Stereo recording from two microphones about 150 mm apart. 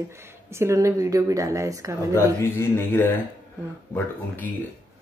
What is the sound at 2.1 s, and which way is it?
Speech, 15° left (ahead or behind).